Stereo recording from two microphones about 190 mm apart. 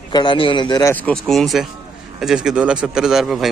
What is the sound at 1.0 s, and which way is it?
Speech, centre (ahead or behind).